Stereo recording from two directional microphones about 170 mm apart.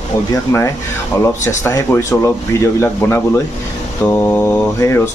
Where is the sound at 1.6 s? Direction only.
15° left (ahead or behind).